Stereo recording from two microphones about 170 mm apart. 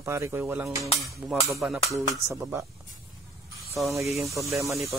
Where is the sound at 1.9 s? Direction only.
15° right (ahead or behind).